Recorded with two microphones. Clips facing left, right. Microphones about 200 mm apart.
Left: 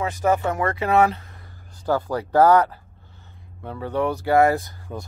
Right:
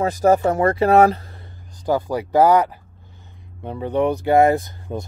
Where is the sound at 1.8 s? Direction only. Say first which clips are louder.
Right 2 dB; 15° right (ahead or behind).